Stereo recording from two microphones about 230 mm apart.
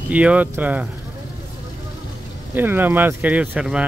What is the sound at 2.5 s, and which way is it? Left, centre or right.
Speech, centre.